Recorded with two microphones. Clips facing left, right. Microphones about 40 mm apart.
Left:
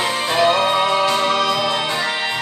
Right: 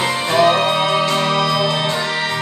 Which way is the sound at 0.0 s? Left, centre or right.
Right.